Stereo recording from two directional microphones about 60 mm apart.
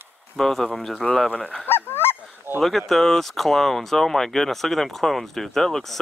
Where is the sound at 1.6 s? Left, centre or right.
Left.